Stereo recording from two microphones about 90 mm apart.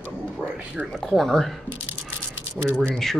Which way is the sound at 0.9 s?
Centre (ahead or behind).